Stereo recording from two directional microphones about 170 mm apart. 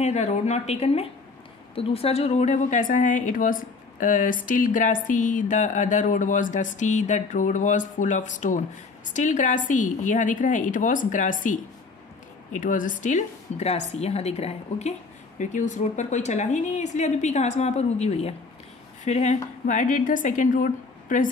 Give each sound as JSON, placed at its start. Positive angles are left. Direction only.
{"t": 0.0, "sound": "speech", "side_deg": 40}